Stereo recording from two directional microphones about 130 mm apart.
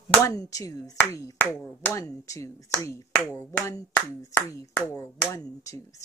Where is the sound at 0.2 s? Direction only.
25° left (ahead or behind).